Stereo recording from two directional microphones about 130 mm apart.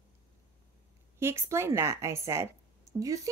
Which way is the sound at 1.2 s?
20° right (ahead or behind).